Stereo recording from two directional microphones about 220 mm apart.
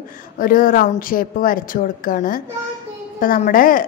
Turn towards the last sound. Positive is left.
turn(degrees=40)  # may be behind; listen again after turning